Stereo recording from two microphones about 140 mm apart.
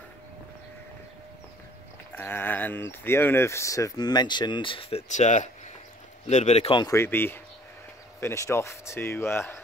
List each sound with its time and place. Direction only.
2.1 s speech: 15° left (ahead or behind); by 6.7 s 50° left (ahead or behind)
6.9 s speech: 15° left (ahead or behind)